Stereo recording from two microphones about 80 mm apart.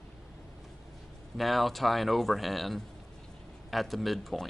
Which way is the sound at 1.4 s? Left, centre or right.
Centre.